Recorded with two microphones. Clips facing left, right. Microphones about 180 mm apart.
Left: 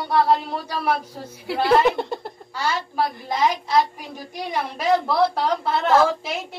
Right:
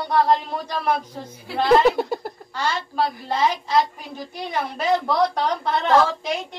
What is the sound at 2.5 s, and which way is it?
A woman's voice, 10° left (ahead or behind).